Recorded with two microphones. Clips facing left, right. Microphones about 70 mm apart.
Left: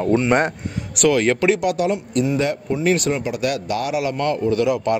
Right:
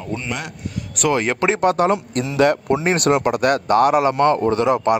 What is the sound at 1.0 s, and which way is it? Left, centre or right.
Speech, centre.